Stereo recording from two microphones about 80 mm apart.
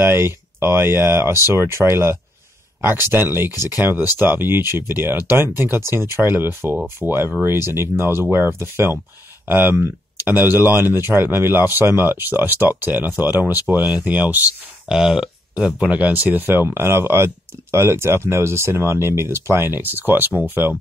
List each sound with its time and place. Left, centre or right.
0.0 s speech: right
14.9 s speech: centre; by 20.7 s right